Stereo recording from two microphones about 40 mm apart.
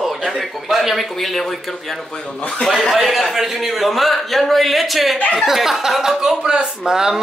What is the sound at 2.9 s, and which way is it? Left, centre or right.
A man's voice, centre.